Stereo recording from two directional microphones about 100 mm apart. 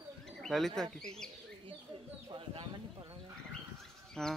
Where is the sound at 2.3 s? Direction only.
60° right (ahead or behind).